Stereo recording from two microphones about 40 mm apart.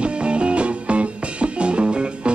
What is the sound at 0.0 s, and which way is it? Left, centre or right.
Music, right.